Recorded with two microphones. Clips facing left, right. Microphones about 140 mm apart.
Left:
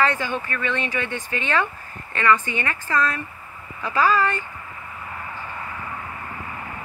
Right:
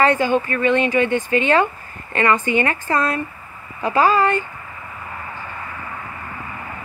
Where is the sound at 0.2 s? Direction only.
35° right (ahead or behind).